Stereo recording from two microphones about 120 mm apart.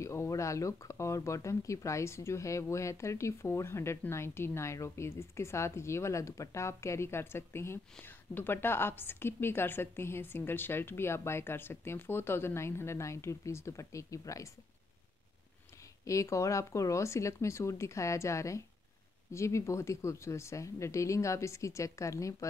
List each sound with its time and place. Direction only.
0.0 s speech: 25° left (ahead or behind)
16.1 s speech: 25° left (ahead or behind)